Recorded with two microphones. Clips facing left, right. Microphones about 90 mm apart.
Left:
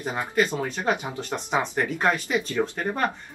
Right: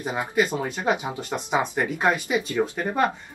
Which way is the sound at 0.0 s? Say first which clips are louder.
Right 1 dB; 10° right (ahead or behind).